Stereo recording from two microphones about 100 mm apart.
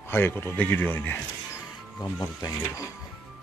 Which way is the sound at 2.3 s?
40° left (ahead or behind).